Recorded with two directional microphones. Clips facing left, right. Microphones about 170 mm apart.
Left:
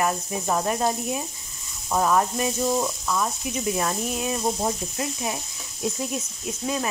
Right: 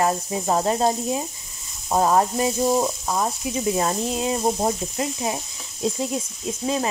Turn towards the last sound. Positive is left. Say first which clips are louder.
# right 3 dB
turn(degrees=-30)  # may be behind; listen again after turning